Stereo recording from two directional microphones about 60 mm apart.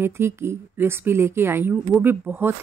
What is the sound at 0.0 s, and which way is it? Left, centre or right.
Speech, right.